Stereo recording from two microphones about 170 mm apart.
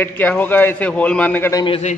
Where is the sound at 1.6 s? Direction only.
35° left (ahead or behind).